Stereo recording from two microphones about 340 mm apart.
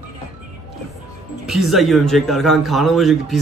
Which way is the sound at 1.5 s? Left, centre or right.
Centre.